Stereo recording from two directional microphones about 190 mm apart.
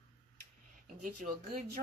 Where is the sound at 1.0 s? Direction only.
45° right (ahead or behind).